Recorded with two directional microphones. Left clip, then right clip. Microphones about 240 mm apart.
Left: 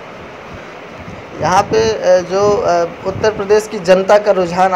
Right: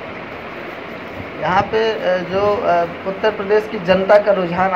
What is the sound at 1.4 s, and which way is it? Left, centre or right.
A man's voice, left.